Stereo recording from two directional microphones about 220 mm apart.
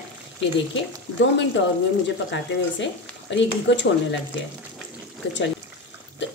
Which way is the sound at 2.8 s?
55° left (ahead or behind).